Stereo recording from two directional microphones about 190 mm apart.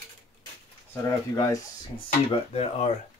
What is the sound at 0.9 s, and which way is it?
Speech, 15° left (ahead or behind).